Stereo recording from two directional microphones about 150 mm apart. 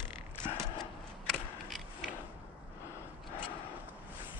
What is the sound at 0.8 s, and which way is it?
Mechanisms, centre (ahead or behind).